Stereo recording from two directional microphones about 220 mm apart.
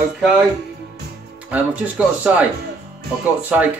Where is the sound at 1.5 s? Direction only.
5° right (ahead or behind).